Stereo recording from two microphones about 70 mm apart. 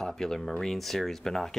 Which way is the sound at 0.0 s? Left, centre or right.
Centre.